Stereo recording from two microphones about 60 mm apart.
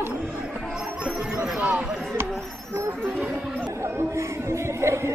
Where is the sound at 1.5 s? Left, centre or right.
Right.